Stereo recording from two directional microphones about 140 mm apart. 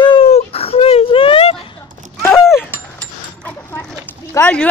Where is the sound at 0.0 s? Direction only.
40° left (ahead or behind).